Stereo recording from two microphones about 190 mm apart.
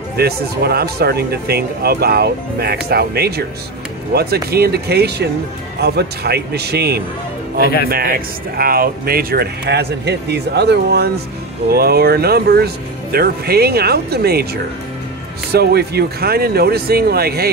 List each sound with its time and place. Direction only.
0.2 s speech: 55° right (ahead or behind)